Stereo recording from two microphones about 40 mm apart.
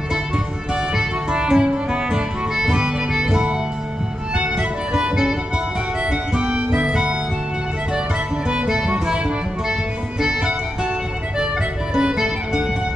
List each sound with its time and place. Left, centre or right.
0.7 s music: centre
4.6 s music: centre
8.5 s music: centre
10.2 s music: centre
11.9 s music: centre